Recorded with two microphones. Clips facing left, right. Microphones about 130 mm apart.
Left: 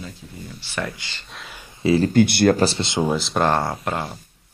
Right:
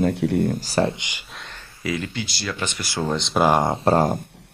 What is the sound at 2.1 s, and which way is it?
Speech, 55° left (ahead or behind).